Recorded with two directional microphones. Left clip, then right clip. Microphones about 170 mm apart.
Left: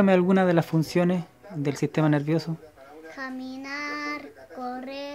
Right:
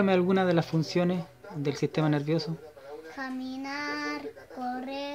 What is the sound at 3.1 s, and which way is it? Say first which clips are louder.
Child singing: left 2 dB; 10° left (ahead or behind).